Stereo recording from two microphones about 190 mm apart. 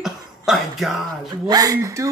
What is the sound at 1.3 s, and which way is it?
Speech, 20° right (ahead or behind).